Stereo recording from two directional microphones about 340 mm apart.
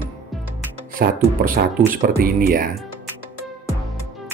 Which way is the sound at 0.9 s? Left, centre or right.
Right.